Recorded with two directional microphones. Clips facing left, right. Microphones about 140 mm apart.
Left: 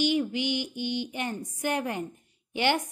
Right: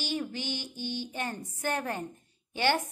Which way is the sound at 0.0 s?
15° left (ahead or behind).